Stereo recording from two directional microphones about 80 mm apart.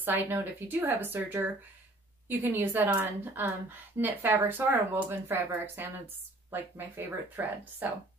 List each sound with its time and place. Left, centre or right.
0.0 s a woman's voice: right